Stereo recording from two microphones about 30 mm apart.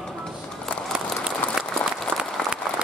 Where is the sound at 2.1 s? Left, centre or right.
Right.